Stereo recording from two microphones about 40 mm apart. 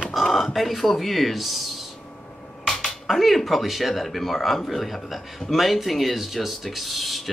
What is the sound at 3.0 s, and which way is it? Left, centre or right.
Speech, centre.